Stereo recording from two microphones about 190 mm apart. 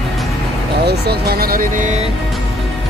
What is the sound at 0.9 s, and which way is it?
Speech, 55° right (ahead or behind).